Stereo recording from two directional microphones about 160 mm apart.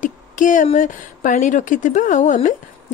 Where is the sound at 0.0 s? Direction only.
55° left (ahead or behind).